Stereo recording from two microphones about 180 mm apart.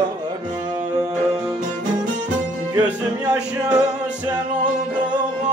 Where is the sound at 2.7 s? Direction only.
20° right (ahead or behind).